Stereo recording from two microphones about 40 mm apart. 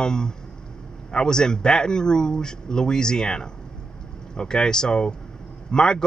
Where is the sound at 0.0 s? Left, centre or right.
Centre.